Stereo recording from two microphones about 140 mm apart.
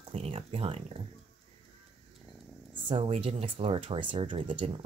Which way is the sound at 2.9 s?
40° right (ahead or behind).